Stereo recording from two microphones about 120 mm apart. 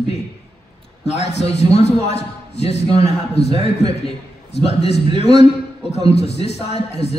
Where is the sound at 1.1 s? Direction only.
60° left (ahead or behind).